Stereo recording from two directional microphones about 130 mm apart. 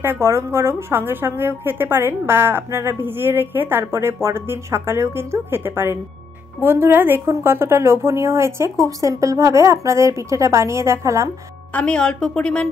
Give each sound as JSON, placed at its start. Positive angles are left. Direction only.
{"t": 0.0, "sound": "a woman's voice", "side_deg": -20}
{"t": 11.7, "sound": "a woman's voice", "side_deg": 5}